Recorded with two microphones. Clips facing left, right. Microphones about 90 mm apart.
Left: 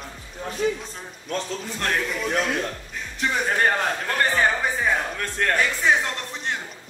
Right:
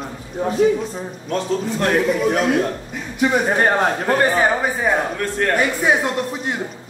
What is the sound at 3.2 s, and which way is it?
Speech, 20° right (ahead or behind).